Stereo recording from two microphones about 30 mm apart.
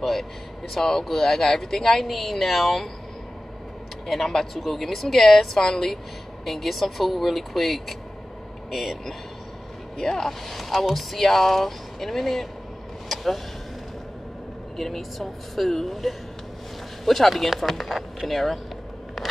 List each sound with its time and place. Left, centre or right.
0.0 s a man's voice: centre
4.1 s speech: centre
9.9 s speech: centre
10.5 s speech: centre
13.1 s vehicle: centre
14.8 s speech: centre